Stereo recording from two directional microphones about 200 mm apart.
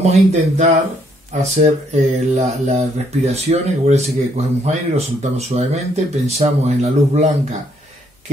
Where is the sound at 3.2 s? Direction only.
35° right (ahead or behind).